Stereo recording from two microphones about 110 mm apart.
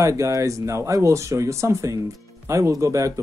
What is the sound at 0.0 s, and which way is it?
Speech, 30° right (ahead or behind).